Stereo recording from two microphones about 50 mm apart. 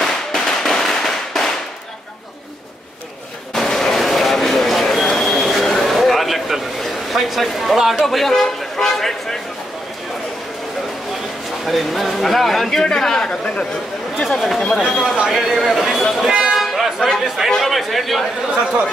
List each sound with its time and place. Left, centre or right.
0.0 s firecracker: centre
3.5 s a sound: centre
8.0 s a man's voice: centre
11.6 s a man's voice: centre
14.2 s a man's voice: centre
16.3 s a sound: centre
17.5 s a man's voice: centre
18.5 s a man's voice: centre